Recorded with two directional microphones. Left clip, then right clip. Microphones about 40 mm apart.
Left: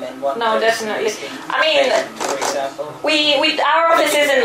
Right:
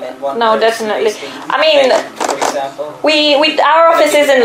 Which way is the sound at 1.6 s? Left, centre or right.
Right.